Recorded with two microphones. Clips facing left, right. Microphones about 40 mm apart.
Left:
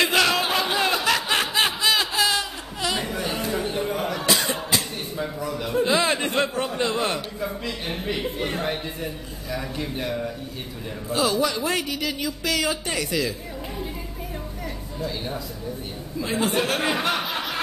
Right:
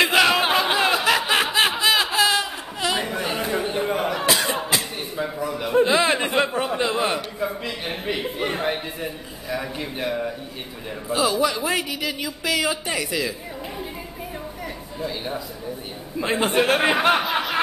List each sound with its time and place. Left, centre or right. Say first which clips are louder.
0.0 s a sound: right 3 dB; centre
5.9 s chuckle: right 2 dB; centre
6.8 s a sound: even; centre
11.1 s speech: right 2 dB; centre
15.0 s speech: right 2 dB; centre
16.2 s speech: right 3 dB; right
17.2 s snicker: right 4 dB; centre